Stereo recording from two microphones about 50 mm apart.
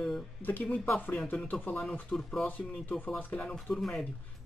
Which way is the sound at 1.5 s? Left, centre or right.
Left.